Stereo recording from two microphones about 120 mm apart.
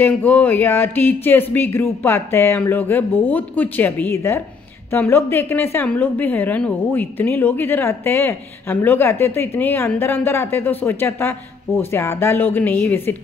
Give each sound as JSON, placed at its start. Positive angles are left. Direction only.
{"t": 0.0, "sound": "a woman's voice", "side_deg": 15}